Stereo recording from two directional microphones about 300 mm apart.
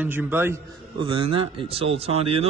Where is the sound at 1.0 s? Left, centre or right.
Centre.